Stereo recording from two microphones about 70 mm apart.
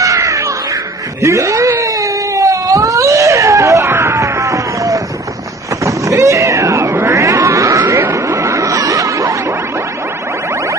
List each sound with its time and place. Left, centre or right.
0.0 s music: right
1.2 s wail: right
5.9 s cat: right
7.9 s a sound: right